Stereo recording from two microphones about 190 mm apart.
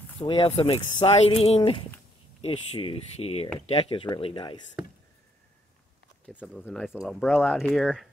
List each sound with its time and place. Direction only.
0.2 s speech: 30° left (ahead or behind)
6.2 s speech: 5° left (ahead or behind)